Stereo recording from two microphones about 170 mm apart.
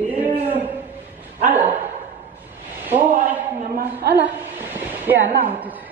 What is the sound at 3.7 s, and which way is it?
Speech, 65° right (ahead or behind).